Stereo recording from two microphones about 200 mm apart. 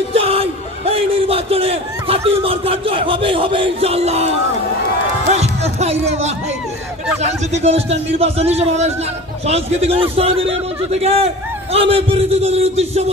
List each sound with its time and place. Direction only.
0.1 s a sound: 30° right (ahead or behind)
5.3 s music: 35° right (ahead or behind)
7.2 s a man's voice: 30° right (ahead or behind)